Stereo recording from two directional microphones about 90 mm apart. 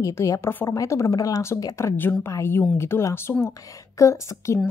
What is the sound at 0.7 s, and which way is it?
A woman's voice, 35° left (ahead or behind).